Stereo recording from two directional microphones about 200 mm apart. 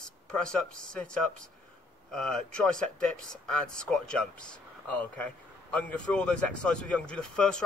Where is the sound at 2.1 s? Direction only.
Centre (ahead or behind).